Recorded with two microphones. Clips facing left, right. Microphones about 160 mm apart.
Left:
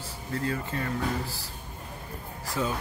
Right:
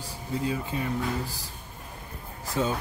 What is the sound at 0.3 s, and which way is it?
Speech, 15° right (ahead or behind).